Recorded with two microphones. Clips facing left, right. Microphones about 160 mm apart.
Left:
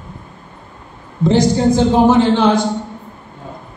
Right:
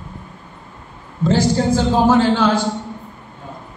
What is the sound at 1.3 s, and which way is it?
A man's voice, 20° left (ahead or behind).